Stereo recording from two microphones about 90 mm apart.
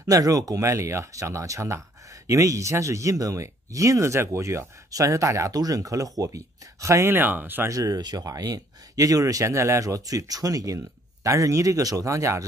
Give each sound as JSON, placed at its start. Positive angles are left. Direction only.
{"t": 0.0, "sound": "speech", "side_deg": -40}
{"t": 7.2, "sound": "speech", "side_deg": -20}
{"t": 7.7, "sound": "speech", "side_deg": -40}